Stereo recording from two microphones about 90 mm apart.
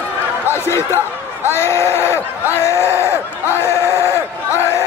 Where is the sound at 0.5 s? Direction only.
30° left (ahead or behind).